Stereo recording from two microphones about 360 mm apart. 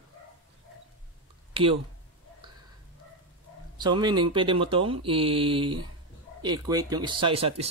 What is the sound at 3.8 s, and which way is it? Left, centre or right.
Speech, centre.